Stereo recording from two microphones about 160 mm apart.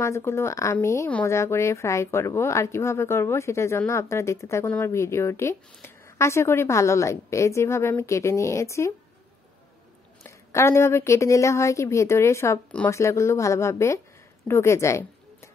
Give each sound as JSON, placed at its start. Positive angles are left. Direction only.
{"t": 0.0, "sound": "speech", "side_deg": 15}
{"t": 10.2, "sound": "speech", "side_deg": 15}